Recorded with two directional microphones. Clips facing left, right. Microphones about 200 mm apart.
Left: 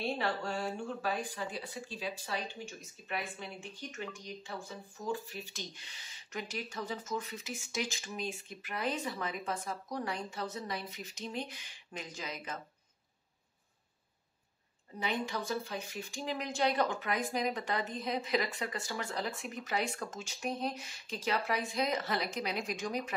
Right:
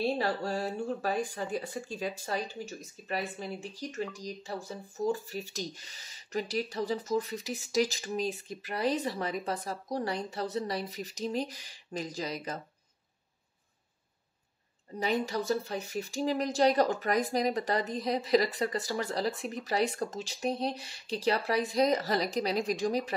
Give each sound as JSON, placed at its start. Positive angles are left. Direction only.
{"t": 0.0, "sound": "speech", "side_deg": -35}
{"t": 15.0, "sound": "speech", "side_deg": -40}